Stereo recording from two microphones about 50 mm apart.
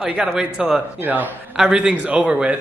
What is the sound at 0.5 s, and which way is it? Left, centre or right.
Speech, centre.